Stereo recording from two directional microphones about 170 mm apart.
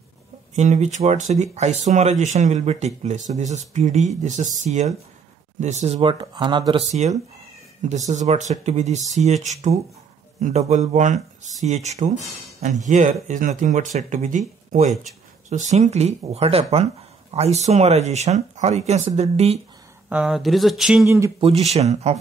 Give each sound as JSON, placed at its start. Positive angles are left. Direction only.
{"t": 0.6, "sound": "speech", "side_deg": -45}
{"t": 5.9, "sound": "speech", "side_deg": -30}
{"t": 6.9, "sound": "speech", "side_deg": -40}
{"t": 20.1, "sound": "speech", "side_deg": -5}
{"t": 21.0, "sound": "speech", "side_deg": -15}
{"t": 21.4, "sound": "speech", "side_deg": -35}